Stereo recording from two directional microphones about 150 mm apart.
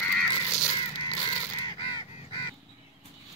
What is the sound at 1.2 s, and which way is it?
Crow, 30° left (ahead or behind).